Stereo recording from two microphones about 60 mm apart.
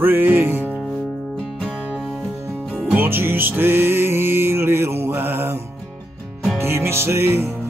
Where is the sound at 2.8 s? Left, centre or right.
Right.